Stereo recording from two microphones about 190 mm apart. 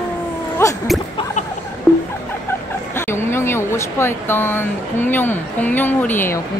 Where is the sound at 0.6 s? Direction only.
15° left (ahead or behind).